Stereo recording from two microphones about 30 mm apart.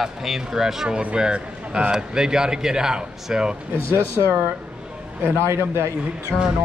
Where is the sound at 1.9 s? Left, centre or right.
Right.